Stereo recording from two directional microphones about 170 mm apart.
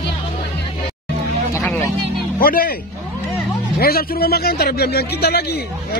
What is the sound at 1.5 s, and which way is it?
Music, 15° left (ahead or behind).